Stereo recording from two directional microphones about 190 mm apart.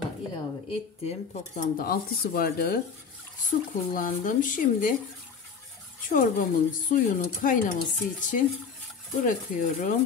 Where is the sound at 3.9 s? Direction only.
45° left (ahead or behind).